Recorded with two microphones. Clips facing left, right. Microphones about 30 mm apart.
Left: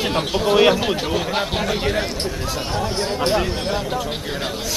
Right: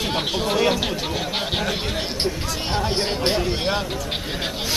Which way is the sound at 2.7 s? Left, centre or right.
Right.